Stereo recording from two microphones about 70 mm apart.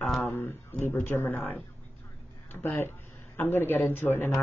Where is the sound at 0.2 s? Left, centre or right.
Left.